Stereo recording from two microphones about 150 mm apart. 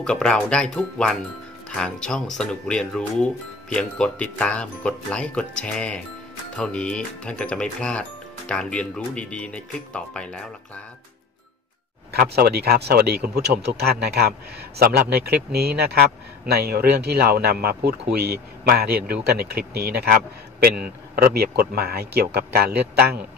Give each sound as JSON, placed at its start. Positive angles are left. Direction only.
{"t": 0.0, "sound": "speech", "side_deg": 5}
{"t": 12.1, "sound": "a man's voice", "side_deg": -90}